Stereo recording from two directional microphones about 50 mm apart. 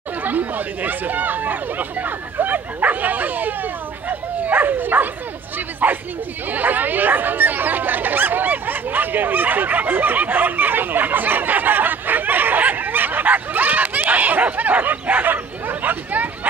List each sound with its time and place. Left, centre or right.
0.2 s speech: right